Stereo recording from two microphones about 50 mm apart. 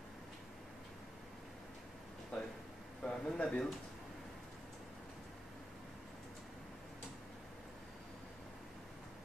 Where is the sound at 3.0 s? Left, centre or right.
Centre.